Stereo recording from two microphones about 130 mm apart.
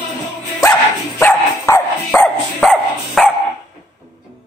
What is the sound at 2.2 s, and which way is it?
Dog, centre (ahead or behind).